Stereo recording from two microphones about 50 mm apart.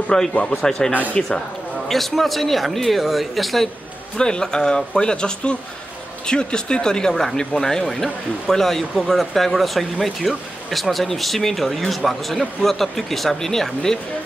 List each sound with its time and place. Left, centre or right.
0.3 s a man's voice: left
0.6 s speech: centre
4.2 s speech: centre